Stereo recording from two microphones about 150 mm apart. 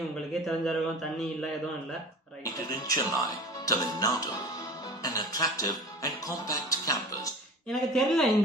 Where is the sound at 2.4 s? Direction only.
25° left (ahead or behind).